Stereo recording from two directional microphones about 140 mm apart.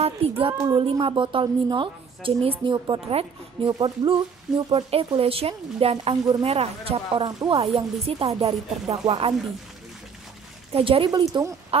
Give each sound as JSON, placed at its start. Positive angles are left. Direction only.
{"t": 0.0, "sound": "child singing", "side_deg": -45}
{"t": 0.6, "sound": "speech", "side_deg": -25}
{"t": 0.8, "sound": "a woman's voice", "side_deg": -40}
{"t": 10.7, "sound": "a woman's voice", "side_deg": -40}
{"t": 11.1, "sound": "speech", "side_deg": -30}
{"t": 11.7, "sound": "speech", "side_deg": -45}